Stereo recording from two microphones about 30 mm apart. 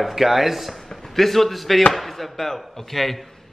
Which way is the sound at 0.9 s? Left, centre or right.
Centre.